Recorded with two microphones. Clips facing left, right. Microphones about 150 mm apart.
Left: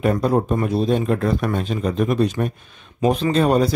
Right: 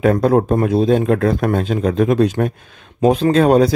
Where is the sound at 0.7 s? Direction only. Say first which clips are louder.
Right 5 dB; 90° right.